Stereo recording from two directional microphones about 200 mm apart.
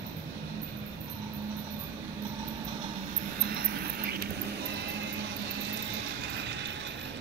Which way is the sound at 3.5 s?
50° right (ahead or behind).